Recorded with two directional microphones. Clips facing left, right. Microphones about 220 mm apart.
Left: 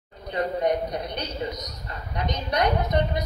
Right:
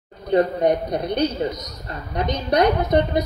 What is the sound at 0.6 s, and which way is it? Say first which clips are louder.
A woman's voice: right 5 dB; 35° right (ahead or behind).